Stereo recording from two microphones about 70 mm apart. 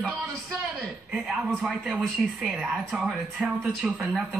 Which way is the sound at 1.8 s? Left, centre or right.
Centre.